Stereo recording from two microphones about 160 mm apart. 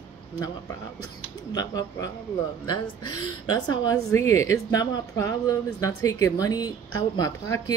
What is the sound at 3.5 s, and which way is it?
A woman's voice, 25° left (ahead or behind).